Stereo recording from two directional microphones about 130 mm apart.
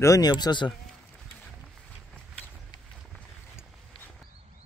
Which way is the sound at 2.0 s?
10° left (ahead or behind).